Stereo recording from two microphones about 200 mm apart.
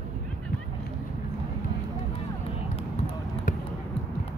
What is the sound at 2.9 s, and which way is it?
Basketball bounce, 35° left (ahead or behind).